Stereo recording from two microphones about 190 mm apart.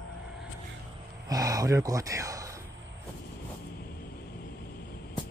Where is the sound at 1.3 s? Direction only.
20° right (ahead or behind).